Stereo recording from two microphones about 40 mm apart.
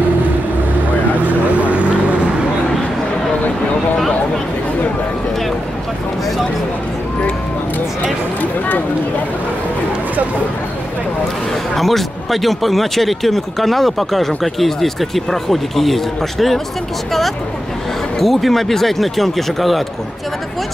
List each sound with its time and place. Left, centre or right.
1.2 s vehicle: right
8.4 s a sound: left
11.7 s speech: centre
18.2 s speech: centre